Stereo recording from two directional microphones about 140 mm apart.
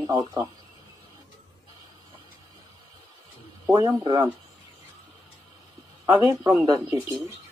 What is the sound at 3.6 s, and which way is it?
Speech, 20° right (ahead or behind).